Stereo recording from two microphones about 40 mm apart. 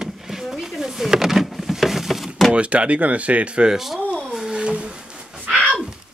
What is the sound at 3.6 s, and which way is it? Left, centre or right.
Speech, centre.